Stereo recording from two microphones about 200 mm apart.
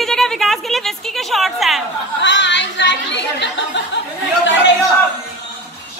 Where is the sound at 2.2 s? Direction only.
65° left (ahead or behind).